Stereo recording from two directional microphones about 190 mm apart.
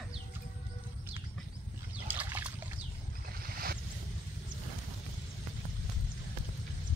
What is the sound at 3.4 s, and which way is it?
Boat, 50° right (ahead or behind).